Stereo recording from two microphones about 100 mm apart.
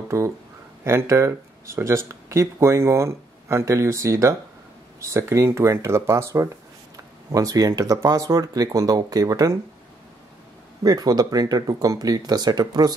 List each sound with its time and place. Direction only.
0.1 s speech: 30° right (ahead or behind)
7.3 s speech: 40° right (ahead or behind)
10.8 s speech: 40° right (ahead or behind)